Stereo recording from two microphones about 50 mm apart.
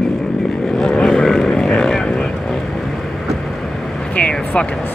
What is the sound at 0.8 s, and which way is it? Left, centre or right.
Vehicle, centre.